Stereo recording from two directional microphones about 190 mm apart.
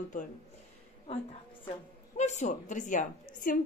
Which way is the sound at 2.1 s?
35° left (ahead or behind).